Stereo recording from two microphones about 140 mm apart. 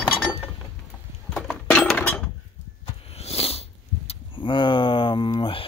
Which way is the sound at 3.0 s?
45° left (ahead or behind).